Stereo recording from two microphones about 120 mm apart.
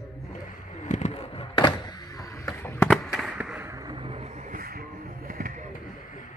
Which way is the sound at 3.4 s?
10° right (ahead or behind).